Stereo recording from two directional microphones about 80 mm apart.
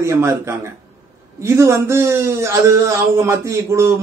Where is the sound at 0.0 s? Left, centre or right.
Right.